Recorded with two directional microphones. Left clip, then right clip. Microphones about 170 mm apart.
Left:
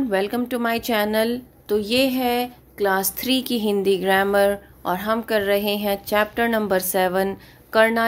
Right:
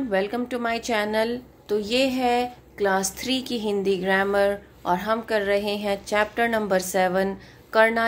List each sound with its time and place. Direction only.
0.1 s a woman's voice: 30° left (ahead or behind)